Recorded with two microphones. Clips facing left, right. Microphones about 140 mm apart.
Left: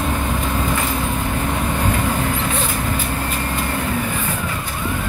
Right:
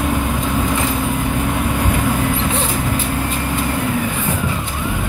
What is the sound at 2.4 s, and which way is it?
Vehicle, 25° right (ahead or behind).